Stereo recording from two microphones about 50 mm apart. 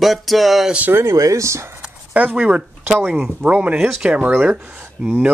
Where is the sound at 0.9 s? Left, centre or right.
Right.